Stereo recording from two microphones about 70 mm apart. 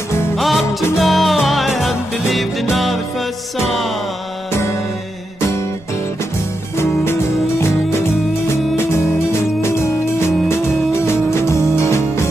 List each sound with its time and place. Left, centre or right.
0.4 s music: centre
8.7 s music: left